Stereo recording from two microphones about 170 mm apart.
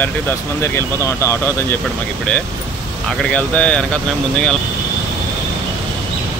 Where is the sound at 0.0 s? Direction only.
15° left (ahead or behind).